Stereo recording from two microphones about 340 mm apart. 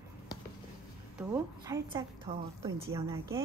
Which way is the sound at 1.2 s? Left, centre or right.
Centre.